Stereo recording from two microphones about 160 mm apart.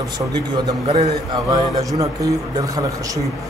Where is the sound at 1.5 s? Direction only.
25° right (ahead or behind).